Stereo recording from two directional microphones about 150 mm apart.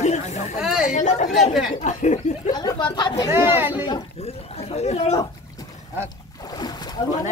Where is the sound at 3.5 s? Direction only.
10° right (ahead or behind).